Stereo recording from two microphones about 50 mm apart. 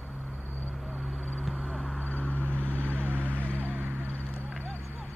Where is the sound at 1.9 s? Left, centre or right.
Left.